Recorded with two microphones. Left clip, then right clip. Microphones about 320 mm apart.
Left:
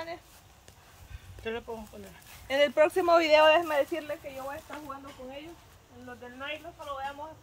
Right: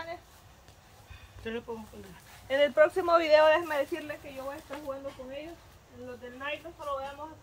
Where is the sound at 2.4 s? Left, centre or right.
Left.